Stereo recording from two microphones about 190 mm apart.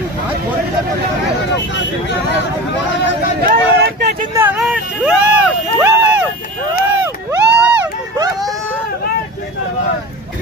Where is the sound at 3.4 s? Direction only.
55° right (ahead or behind).